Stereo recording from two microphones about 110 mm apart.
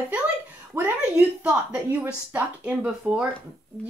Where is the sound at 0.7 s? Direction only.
20° right (ahead or behind).